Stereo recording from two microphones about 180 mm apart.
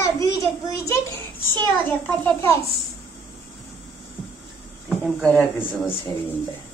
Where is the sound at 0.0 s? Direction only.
15° left (ahead or behind).